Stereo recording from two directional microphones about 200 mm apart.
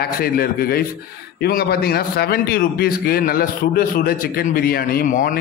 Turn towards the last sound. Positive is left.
turn(degrees=45)  # may be behind; listen again after turning